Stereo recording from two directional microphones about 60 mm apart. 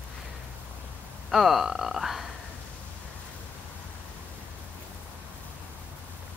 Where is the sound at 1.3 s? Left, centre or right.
Centre.